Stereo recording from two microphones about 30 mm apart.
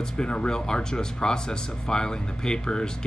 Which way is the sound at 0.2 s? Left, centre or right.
Left.